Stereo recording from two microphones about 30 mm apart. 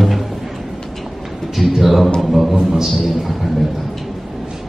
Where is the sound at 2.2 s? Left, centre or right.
Centre.